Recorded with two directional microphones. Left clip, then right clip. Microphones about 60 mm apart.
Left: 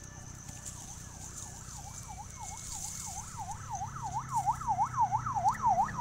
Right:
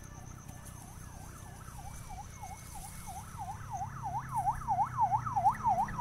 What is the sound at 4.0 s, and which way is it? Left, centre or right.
Emergency vehicle, left.